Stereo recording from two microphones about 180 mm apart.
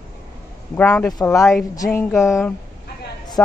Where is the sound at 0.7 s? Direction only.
10° left (ahead or behind).